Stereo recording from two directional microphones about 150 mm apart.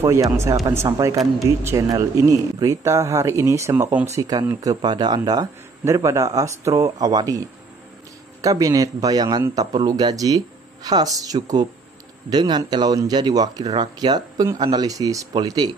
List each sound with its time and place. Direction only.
0.0 s a man's voice: 20° right (ahead or behind)